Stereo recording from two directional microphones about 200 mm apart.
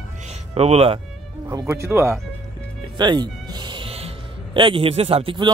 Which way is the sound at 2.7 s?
20° right (ahead or behind).